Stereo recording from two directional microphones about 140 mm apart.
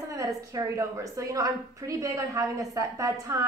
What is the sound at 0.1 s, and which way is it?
A woman's voice, 25° right (ahead or behind).